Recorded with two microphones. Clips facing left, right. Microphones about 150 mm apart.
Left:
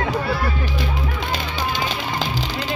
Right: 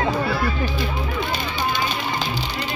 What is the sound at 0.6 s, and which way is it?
Music, 90° left.